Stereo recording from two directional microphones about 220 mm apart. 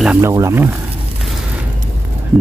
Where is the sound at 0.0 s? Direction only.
10° right (ahead or behind).